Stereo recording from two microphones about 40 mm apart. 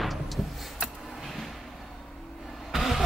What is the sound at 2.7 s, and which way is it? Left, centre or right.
Vehicle, centre.